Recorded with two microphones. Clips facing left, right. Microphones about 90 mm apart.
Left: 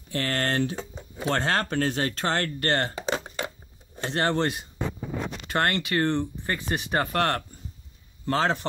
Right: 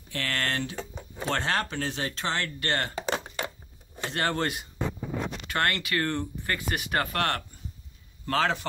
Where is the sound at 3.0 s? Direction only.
25° left (ahead or behind).